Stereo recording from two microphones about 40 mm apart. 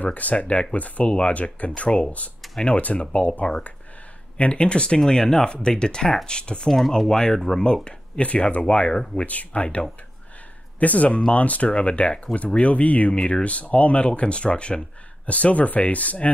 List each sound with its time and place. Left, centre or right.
0.0 s speech: left
6.7 s speech: centre
7.1 s speech: centre
8.5 s speech: left
11.1 s speech: left